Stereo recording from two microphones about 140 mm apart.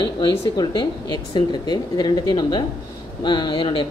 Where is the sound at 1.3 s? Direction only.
30° left (ahead or behind).